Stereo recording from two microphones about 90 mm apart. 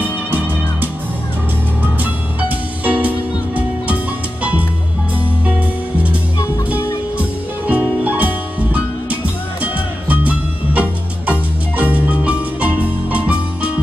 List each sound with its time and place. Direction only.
0.3 s music: 20° right (ahead or behind)
2.4 s music: 15° right (ahead or behind)
7.6 s music: 15° right (ahead or behind)